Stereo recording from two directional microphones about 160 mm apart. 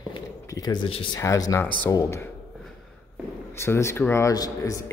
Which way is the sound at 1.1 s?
20° left (ahead or behind).